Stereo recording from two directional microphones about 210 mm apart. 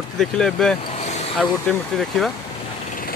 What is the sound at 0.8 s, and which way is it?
Vehicle, 30° left (ahead or behind).